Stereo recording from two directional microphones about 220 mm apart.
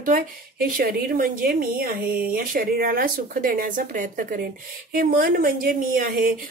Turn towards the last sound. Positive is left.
turn(degrees=-40)  # may be behind; listen again after turning